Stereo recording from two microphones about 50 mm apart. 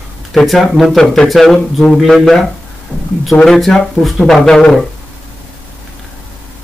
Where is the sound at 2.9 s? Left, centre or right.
Left.